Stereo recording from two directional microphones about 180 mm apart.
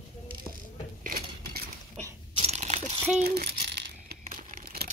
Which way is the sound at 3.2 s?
60° right (ahead or behind).